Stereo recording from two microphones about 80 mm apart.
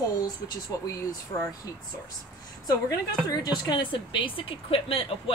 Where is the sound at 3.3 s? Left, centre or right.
Left.